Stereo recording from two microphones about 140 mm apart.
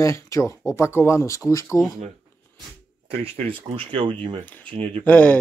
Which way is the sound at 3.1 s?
45° right (ahead or behind).